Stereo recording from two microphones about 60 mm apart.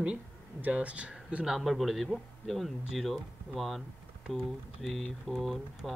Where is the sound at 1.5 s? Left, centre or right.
Centre.